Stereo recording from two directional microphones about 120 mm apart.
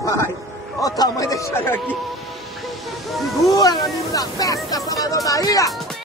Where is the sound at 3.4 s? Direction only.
30° left (ahead or behind).